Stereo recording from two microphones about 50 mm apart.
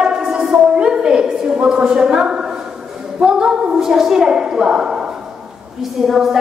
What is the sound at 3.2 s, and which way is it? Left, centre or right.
A woman's voice, centre.